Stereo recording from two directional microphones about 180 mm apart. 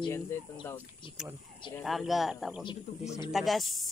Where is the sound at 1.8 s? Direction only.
Centre (ahead or behind).